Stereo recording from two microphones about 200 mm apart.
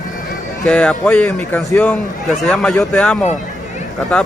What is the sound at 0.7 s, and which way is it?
A man's voice, 5° left (ahead or behind).